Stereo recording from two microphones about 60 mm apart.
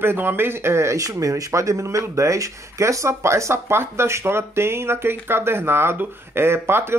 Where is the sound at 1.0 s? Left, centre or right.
Right.